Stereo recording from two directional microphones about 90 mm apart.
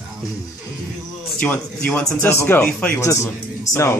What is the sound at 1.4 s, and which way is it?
A woman's voice, 20° left (ahead or behind).